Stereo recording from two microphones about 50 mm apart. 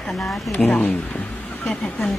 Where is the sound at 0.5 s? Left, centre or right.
Left.